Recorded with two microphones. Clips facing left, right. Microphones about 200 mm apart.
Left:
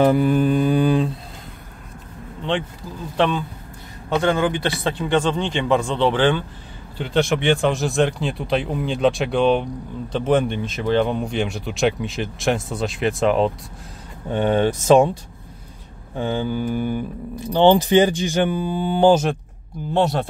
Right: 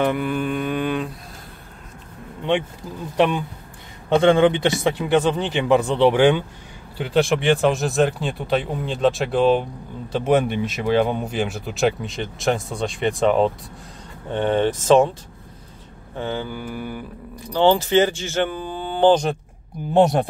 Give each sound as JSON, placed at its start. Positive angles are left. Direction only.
{"t": 0.0, "sound": "mantra", "side_deg": 35}
{"t": 3.2, "sound": "speech", "side_deg": -15}
{"t": 4.1, "sound": "a man's voice", "side_deg": -25}
{"t": 4.8, "sound": "speech", "side_deg": -10}
{"t": 14.3, "sound": "speech", "side_deg": 10}
{"t": 16.2, "sound": "mantra", "side_deg": 15}
{"t": 17.5, "sound": "speech", "side_deg": 20}
{"t": 19.9, "sound": "speech", "side_deg": -15}